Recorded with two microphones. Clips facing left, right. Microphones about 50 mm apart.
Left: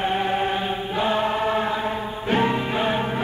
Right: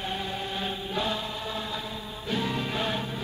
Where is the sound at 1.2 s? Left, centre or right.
Left.